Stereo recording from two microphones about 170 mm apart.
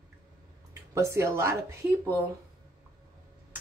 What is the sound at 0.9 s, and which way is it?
Speech, 15° right (ahead or behind).